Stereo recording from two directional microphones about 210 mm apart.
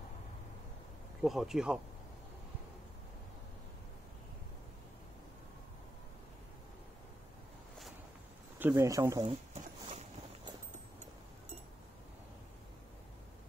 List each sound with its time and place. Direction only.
1.2 s speech: centre (ahead or behind)
8.5 s speech: 10° right (ahead or behind)
9.5 s a sound: 35° right (ahead or behind)